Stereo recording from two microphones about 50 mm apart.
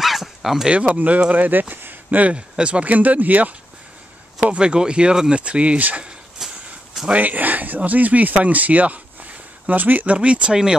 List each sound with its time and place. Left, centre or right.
0.0 s bow-wow: centre
0.7 s speech: right
4.4 s speech: centre
6.0 s a sound: centre
7.1 s speech: right; by 10.8 s centre